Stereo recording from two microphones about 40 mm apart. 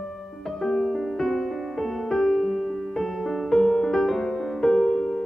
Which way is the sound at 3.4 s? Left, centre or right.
Centre.